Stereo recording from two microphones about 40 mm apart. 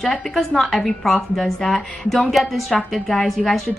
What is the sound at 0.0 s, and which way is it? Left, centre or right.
A woman's voice, centre.